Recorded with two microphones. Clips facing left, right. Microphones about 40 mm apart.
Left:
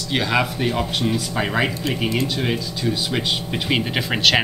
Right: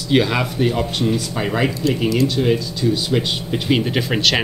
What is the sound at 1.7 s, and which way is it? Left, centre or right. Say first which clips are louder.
Speech: right 5 dB; left.